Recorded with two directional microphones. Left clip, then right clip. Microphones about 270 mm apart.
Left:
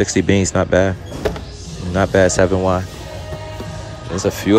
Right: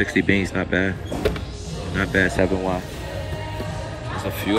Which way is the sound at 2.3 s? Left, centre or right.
Right.